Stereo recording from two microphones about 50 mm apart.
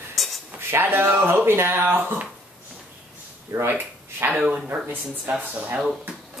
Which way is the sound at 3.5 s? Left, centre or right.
Right.